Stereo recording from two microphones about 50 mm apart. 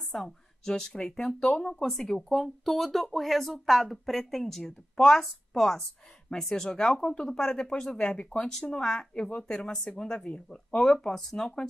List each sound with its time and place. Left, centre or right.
0.1 s speech: centre
1.9 s speech: centre
8.5 s speech: centre
10.8 s speech: centre